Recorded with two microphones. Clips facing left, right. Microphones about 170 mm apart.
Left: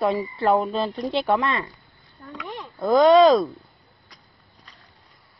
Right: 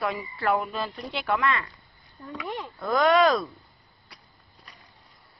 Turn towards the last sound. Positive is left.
turn(degrees=25)  # may be behind; listen again after turning